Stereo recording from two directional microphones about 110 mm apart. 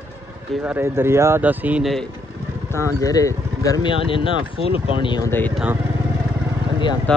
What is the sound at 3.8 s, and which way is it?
Speech, 50° left (ahead or behind).